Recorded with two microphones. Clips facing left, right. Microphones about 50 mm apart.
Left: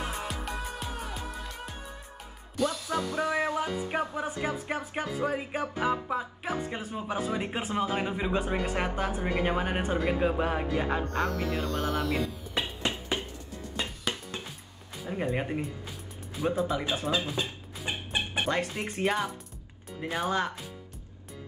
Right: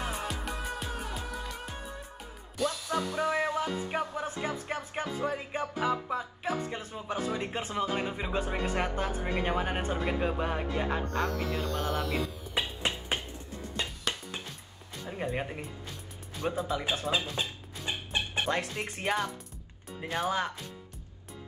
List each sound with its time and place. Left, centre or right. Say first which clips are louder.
0.3 s music: even; centre
15.0 s speech: left 3 dB; centre
17.8 s chicken: left 1 dB; centre
18.4 s speech: left 2 dB; centre